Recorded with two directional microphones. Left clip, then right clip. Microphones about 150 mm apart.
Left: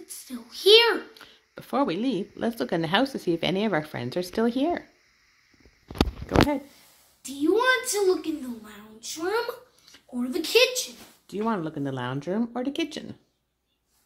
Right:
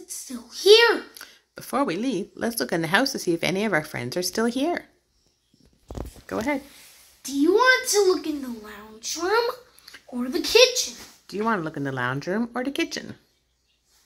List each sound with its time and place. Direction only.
0.1 s a sound: 40° right (ahead or behind)
1.1 s speech: 5° left (ahead or behind)
7.2 s a child's voice: 35° right (ahead or behind)
11.4 s speech: 10° left (ahead or behind)